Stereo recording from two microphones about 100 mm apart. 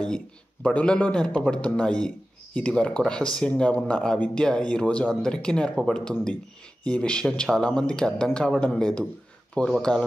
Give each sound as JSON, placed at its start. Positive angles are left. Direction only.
{"t": 0.0, "sound": "a man's voice", "side_deg": 10}